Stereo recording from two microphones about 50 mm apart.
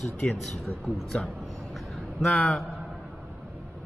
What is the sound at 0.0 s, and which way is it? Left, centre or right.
Speech, centre.